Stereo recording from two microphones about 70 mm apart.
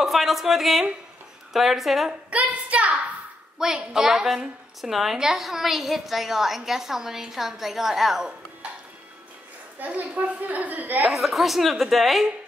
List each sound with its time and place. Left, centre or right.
0.0 s a woman's voice: centre
2.3 s a woman's voice: centre
3.5 s a woman's voice: centre
9.8 s a woman's voice: right
11.1 s a woman's voice: centre